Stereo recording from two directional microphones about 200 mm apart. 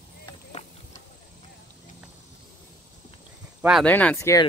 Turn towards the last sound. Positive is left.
turn(degrees=15)  # may be behind; listen again after turning